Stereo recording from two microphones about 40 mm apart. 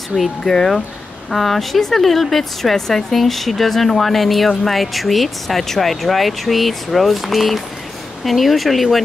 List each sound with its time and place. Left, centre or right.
0.1 s speech: centre
1.3 s speech: centre